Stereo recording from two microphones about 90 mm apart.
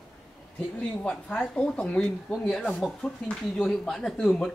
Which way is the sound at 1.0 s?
15° left (ahead or behind).